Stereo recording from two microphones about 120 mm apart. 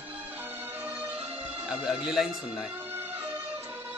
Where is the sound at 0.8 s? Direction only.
20° right (ahead or behind).